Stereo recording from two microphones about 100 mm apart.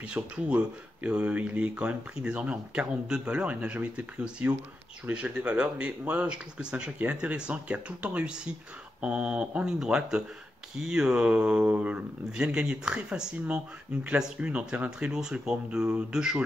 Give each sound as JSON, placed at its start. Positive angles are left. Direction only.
{"t": 0.2, "sound": "speech", "side_deg": -25}
{"t": 1.0, "sound": "speech", "side_deg": -10}